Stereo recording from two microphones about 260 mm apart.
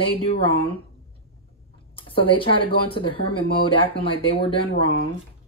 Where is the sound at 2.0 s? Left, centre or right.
Centre.